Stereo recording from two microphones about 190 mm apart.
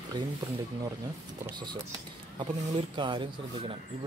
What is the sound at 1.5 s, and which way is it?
Speech, 25° right (ahead or behind).